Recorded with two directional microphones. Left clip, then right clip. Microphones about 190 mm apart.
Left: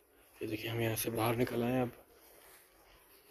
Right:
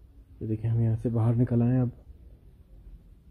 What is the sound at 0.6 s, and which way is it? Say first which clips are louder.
Speech: even; 20° right (ahead or behind).